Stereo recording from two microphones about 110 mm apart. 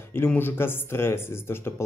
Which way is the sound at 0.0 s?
20° left (ahead or behind).